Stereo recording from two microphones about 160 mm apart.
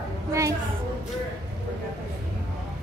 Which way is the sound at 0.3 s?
20° right (ahead or behind).